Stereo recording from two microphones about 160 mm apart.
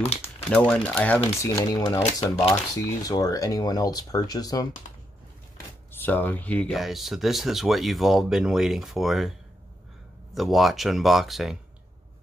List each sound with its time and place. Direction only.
0.0 s speech: 40° left (ahead or behind)
0.5 s speech: 5° left (ahead or behind)
1.4 s speech: 20° left (ahead or behind)
5.9 s speech: 10° left (ahead or behind)
10.3 s speech: centre (ahead or behind)